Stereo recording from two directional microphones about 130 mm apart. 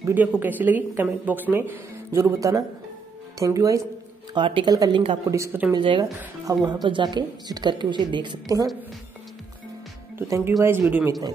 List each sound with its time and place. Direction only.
0.0 s a woman's voice: 15° right (ahead or behind)
4.3 s a woman's voice: 40° right (ahead or behind); by 5.6 s 25° right (ahead or behind)
5.8 s a woman's voice: 40° right (ahead or behind)
6.4 s a woman's voice: 30° right (ahead or behind)
10.1 s a woman's voice: 20° right (ahead or behind)
11.1 s speech: 30° right (ahead or behind)